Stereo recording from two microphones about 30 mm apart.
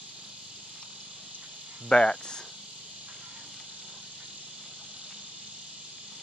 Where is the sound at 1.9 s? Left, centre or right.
Left.